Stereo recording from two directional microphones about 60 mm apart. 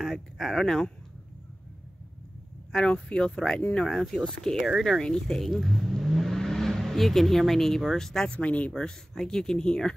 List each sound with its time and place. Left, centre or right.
0.0 s speech: centre
2.7 s speech: centre
4.6 s speech: centre
4.8 s speech: centre
8.3 s speech: left